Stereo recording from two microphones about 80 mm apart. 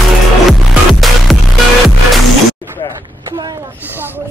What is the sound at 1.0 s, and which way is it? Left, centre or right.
Music, centre.